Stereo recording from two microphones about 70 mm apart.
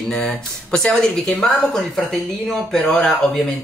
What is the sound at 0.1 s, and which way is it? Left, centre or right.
Speech, centre.